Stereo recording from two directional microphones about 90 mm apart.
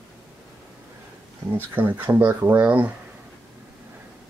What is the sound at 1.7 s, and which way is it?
Speech, 20° right (ahead or behind).